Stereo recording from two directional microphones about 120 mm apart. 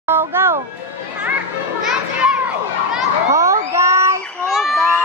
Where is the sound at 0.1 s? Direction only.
20° right (ahead or behind).